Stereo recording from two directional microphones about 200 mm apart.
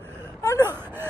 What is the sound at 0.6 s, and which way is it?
Wail, 10° right (ahead or behind).